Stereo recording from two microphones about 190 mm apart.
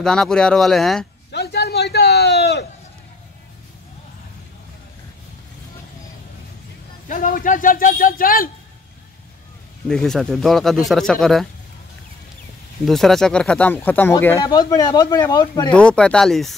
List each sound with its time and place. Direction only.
0.0 s speech: 5° left (ahead or behind)
1.3 s a sound: 60° left (ahead or behind)
7.1 s speech: 45° left (ahead or behind)
9.8 s speech: 5° left (ahead or behind)
12.8 s speech: centre (ahead or behind); by 15.7 s 20° left (ahead or behind)
15.7 s speech: 5° left (ahead or behind)